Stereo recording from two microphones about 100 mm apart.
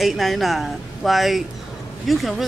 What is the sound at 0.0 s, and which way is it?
Speech, centre (ahead or behind).